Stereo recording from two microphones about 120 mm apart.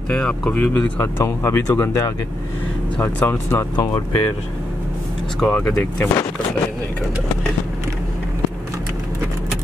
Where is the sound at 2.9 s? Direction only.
20° left (ahead or behind).